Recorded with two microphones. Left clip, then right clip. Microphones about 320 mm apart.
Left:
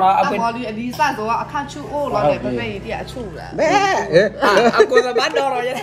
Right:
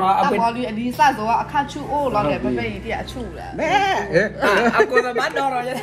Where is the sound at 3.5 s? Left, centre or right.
Left.